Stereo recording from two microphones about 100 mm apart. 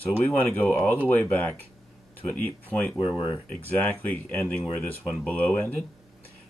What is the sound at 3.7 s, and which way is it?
Speech, 20° left (ahead or behind).